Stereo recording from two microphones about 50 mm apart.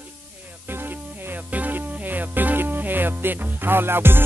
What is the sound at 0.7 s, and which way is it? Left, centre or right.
Music, right.